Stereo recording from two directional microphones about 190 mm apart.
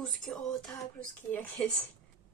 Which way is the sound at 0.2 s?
Centre (ahead or behind).